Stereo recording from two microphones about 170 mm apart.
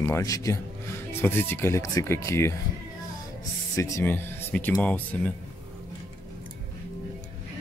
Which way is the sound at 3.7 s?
20° left (ahead or behind).